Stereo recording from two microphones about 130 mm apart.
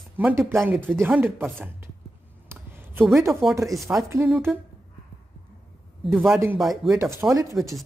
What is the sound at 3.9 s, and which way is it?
Speech, 15° right (ahead or behind).